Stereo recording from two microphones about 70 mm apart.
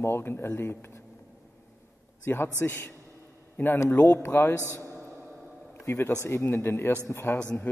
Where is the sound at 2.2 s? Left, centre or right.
Left.